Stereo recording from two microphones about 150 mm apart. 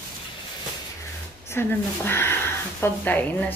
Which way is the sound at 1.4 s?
15° left (ahead or behind).